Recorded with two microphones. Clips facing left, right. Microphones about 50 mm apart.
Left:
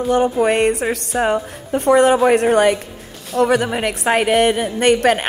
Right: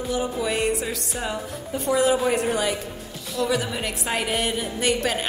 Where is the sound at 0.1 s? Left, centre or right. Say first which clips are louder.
Left 10 dB; left.